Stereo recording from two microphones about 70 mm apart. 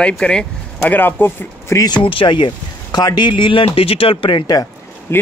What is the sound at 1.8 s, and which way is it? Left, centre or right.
Speech, left.